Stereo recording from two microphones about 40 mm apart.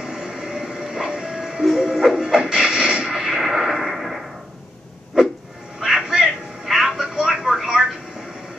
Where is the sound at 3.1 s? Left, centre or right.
Centre.